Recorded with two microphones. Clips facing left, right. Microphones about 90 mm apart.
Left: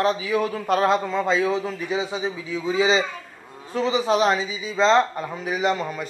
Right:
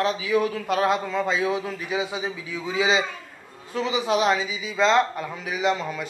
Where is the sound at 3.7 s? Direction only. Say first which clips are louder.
Left 3 dB; 35° left (ahead or behind).